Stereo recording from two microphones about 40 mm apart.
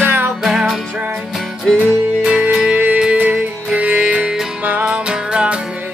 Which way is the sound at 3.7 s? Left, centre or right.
Right.